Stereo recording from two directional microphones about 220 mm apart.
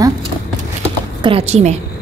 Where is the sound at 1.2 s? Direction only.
25° right (ahead or behind).